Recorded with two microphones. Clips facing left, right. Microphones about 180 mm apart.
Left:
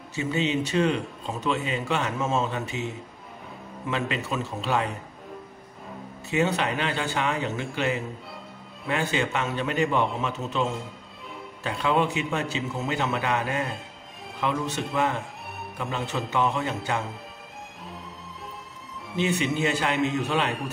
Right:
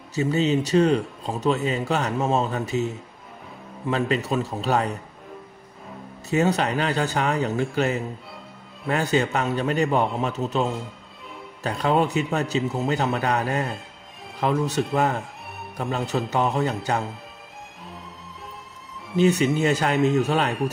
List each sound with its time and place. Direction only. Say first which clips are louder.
0.1 s a man's voice: right 5 dB; 40° right (ahead or behind)
3.9 s a man's voice: right 5 dB; 40° right (ahead or behind)
6.3 s a man's voice: right 3 dB; 40° right (ahead or behind)
19.1 s speech: right 6 dB; 40° right (ahead or behind)